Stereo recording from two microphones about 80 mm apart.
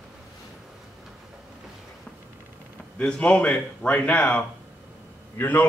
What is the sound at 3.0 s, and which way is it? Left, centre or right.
A man's voice, centre.